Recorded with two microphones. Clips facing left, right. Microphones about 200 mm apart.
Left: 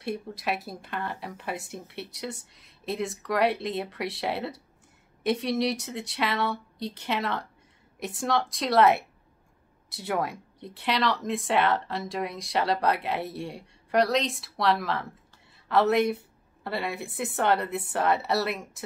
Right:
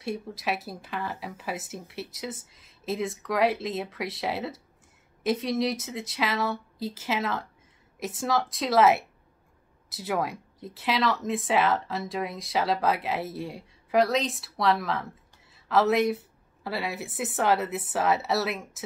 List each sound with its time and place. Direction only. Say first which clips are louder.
0.0 s speech: even; centre (ahead or behind)